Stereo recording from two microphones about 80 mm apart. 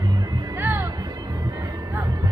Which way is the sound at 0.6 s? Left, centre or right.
Right.